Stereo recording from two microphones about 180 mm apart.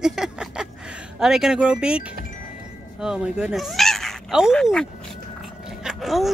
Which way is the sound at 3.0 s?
5° right (ahead or behind).